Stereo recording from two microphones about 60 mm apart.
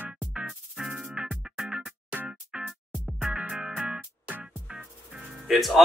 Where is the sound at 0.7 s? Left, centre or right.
Centre.